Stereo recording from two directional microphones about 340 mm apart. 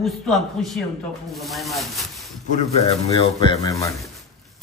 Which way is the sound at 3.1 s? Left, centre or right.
Centre.